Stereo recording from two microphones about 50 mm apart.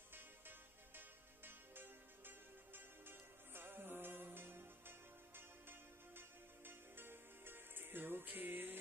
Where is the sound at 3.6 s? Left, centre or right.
Right.